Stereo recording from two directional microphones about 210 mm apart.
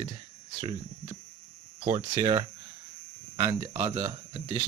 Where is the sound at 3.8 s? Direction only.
25° right (ahead or behind).